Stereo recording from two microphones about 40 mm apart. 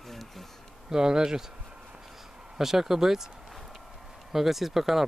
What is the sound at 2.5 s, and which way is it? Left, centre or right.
Speech, centre.